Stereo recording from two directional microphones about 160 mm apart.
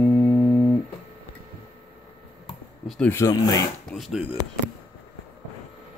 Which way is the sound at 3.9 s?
Centre (ahead or behind).